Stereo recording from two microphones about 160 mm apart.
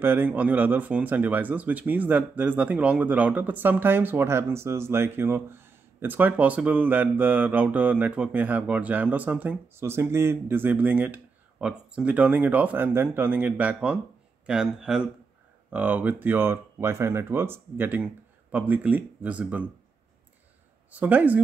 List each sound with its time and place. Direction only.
0.0 s speech: 15° right (ahead or behind)
20.9 s speech: 10° right (ahead or behind)